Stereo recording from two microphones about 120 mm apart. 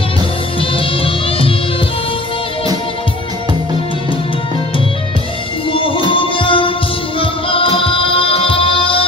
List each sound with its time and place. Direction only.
0.6 s music: 50° left (ahead or behind)
5.7 s music: 45° left (ahead or behind)